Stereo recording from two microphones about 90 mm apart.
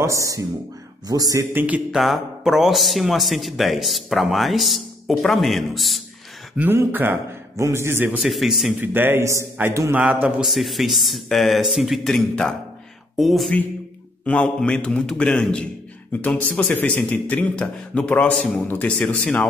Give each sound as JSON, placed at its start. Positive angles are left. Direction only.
{"t": 0.0, "sound": "speech", "side_deg": -35}
{"t": 1.5, "sound": "a man's voice", "side_deg": -20}
{"t": 1.9, "sound": "a man's voice", "side_deg": -5}
{"t": 6.5, "sound": "a man's voice", "side_deg": -20}
{"t": 8.2, "sound": "a man's voice", "side_deg": 0}
{"t": 8.8, "sound": "a man's voice", "side_deg": -20}
{"t": 9.2, "sound": "speech", "side_deg": -35}
{"t": 9.9, "sound": "a man's voice", "side_deg": -15}
{"t": 10.4, "sound": "a man's voice", "side_deg": 0}
{"t": 14.2, "sound": "a man's voice", "side_deg": 15}